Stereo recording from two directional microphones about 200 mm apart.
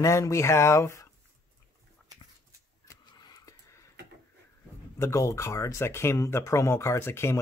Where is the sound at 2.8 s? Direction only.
20° left (ahead or behind).